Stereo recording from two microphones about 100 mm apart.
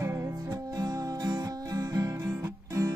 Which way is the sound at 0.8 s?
40° right (ahead or behind).